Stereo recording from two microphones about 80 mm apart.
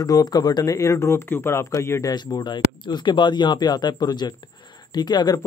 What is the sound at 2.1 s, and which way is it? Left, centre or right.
Speech, left.